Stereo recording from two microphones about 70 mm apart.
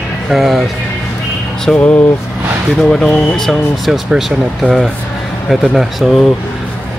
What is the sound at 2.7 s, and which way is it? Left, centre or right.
A man's voice, centre.